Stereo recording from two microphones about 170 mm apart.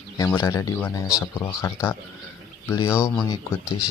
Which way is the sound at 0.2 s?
20° left (ahead or behind).